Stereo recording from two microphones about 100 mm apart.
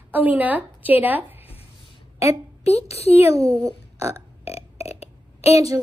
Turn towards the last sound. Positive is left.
turn(degrees=90)